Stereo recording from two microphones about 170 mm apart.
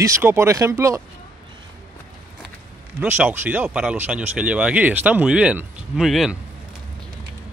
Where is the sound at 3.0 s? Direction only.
10° right (ahead or behind).